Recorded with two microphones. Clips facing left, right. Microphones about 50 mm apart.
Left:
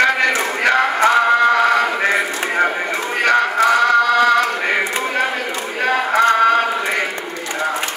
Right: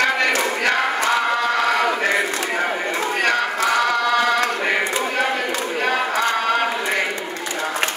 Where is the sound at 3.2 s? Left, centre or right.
Left.